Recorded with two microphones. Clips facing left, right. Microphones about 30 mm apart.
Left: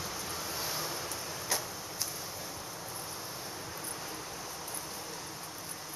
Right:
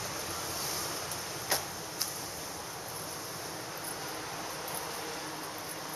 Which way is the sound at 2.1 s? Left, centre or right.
Centre.